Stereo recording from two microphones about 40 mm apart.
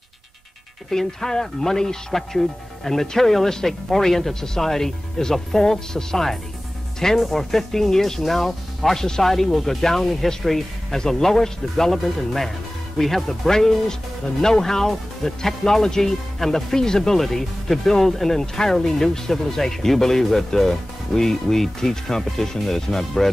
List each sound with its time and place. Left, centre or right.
0.8 s speech: centre
9.0 s speech: centre
9.3 s speech: centre